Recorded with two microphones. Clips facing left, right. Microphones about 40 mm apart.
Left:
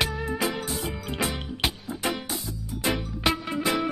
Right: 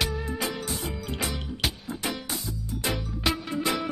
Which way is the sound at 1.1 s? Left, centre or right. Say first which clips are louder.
Left 3 dB; centre.